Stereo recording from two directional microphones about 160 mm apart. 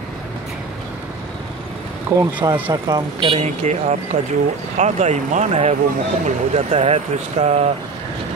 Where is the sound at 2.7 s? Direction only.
25° right (ahead or behind).